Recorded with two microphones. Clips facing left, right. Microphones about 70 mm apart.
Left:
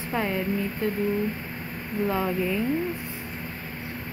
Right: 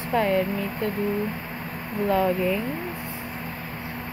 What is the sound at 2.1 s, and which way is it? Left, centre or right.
Speech, centre.